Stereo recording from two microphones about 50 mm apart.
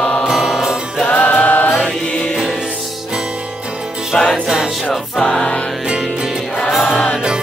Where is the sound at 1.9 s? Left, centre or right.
Left.